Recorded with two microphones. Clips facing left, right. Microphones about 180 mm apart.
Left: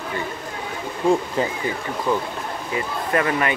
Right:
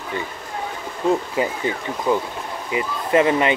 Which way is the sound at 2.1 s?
15° right (ahead or behind).